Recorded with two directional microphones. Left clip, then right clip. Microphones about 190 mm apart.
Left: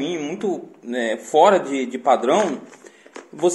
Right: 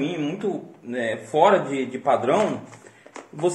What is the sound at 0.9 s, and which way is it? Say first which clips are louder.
A man's voice: left 4 dB; 45° left (ahead or behind).